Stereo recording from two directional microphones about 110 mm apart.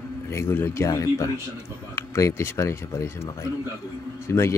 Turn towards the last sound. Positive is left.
turn(degrees=25)  # may be behind; listen again after turning